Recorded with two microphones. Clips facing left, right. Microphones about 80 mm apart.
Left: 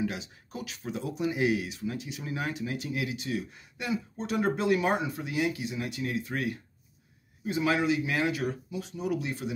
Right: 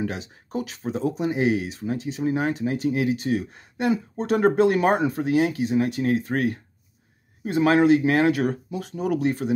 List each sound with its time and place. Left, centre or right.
0.0 s speech: right